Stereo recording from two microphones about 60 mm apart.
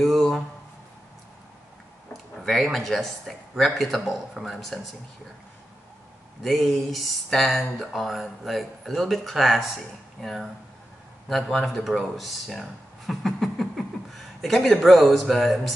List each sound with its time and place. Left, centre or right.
0.0 s a sound: centre
2.3 s speech: centre
6.4 s speech: centre